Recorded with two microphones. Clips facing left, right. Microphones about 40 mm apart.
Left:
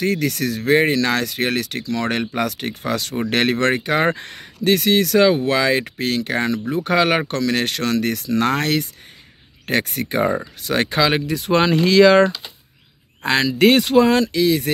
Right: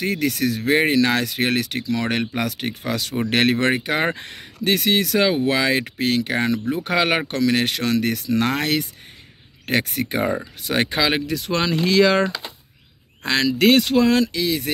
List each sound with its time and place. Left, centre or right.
0.0 s speech: centre
11.2 s speech: centre
13.2 s speech: centre